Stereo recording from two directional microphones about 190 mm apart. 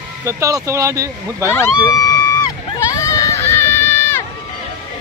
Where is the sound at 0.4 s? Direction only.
15° right (ahead or behind).